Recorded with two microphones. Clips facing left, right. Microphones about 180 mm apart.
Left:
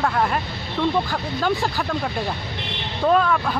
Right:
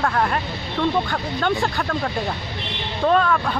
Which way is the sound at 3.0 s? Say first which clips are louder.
Even; 5° left (ahead or behind).